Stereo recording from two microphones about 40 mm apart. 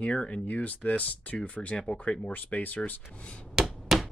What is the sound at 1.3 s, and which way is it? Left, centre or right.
Speech, left.